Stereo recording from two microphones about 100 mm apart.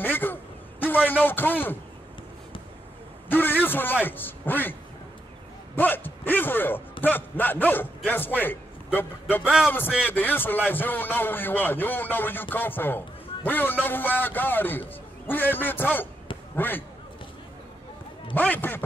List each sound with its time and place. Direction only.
0.0 s a sound: 20° left (ahead or behind)
3.3 s a man's voice: 20° left (ahead or behind)
5.8 s a man's voice: 20° left (ahead or behind)
9.4 s a sound: 5° right (ahead or behind)
9.7 s a man's voice: 20° left (ahead or behind)
18.3 s a man's voice: 20° left (ahead or behind)